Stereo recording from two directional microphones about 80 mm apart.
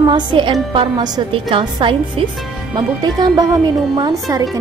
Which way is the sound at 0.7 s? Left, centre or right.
Right.